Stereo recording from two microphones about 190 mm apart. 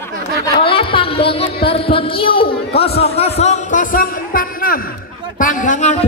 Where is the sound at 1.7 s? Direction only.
30° left (ahead or behind); by 4.7 s 50° left (ahead or behind).